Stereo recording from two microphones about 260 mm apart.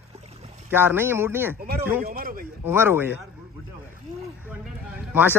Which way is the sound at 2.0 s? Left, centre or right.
Right.